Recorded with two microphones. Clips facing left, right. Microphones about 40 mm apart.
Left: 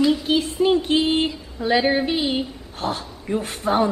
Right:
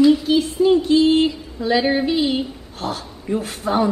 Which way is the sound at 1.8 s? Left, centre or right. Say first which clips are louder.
Right 2 dB; centre.